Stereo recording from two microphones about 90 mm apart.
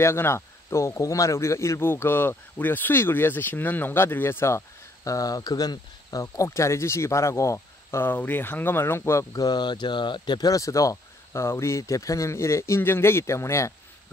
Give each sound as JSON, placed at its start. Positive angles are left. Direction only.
{"t": 0.0, "sound": "a man's voice", "side_deg": 30}
{"t": 9.3, "sound": "a man's voice", "side_deg": 45}